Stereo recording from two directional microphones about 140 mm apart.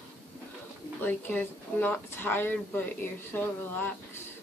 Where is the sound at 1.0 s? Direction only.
10° left (ahead or behind).